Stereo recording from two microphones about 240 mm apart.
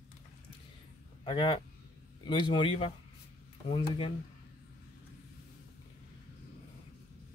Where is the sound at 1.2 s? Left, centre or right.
Left.